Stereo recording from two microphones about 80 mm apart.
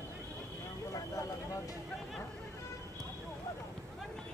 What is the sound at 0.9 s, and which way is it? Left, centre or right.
Vehicle, left.